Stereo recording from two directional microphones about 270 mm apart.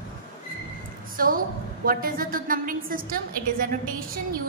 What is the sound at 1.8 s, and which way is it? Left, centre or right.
A woman's voice, right.